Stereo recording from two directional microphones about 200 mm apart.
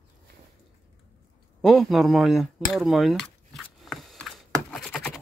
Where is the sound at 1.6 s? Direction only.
Centre (ahead or behind).